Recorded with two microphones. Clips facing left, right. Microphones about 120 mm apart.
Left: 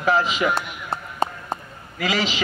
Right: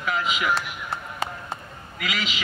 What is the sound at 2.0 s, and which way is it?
Speech, 30° left (ahead or behind).